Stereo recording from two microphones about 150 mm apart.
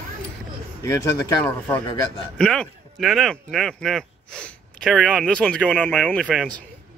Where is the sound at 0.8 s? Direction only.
20° left (ahead or behind).